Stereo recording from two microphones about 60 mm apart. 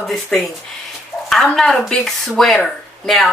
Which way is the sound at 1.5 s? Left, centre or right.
Centre.